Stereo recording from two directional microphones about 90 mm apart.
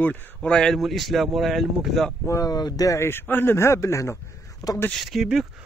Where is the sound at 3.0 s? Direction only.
25° left (ahead or behind).